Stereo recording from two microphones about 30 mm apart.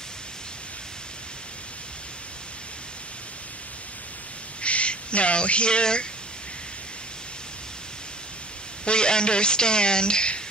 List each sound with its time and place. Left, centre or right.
4.6 s speech: left
8.8 s speech: left